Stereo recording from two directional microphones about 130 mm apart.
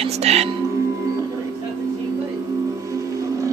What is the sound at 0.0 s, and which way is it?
Speech, 55° right (ahead or behind).